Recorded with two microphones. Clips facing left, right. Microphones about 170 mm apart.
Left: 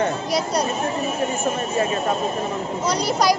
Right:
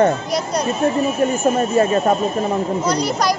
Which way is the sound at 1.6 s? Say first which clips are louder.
Right 6 dB; 45° right (ahead or behind).